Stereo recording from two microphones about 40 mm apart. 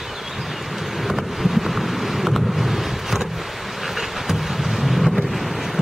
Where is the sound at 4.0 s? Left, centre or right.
Centre.